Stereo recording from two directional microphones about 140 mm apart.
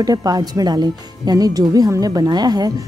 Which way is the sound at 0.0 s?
25° right (ahead or behind).